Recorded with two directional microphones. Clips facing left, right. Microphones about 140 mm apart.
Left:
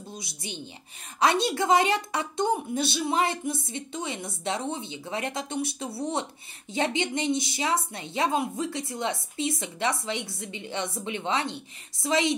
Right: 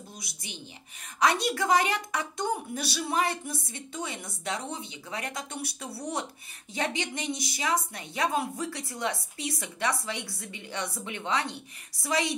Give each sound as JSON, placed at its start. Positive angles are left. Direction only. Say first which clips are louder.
{"t": 0.2, "sound": "speech", "louder": "left 5 dB", "side_deg": 30}